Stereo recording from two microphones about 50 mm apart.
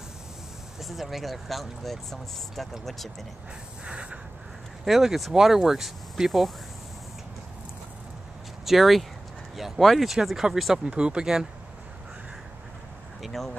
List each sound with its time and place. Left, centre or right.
0.7 s speech: centre
3.8 s speech: right
4.8 s speech: centre
8.6 s speech: centre
10.8 s speech: centre
13.2 s speech: centre